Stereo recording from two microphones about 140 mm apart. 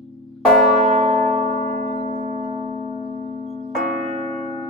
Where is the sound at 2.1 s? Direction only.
55° right (ahead or behind).